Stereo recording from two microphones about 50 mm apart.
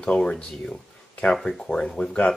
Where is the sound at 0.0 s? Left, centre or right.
Centre.